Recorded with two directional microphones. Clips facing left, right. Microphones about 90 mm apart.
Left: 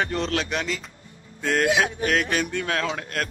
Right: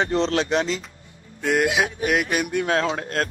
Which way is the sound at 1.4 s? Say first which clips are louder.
Right 1 dB; 10° right (ahead or behind).